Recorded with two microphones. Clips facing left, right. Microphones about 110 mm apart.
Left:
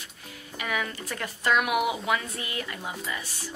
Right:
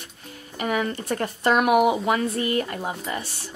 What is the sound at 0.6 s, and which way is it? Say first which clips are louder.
Speech: right 6 dB; 40° right (ahead or behind).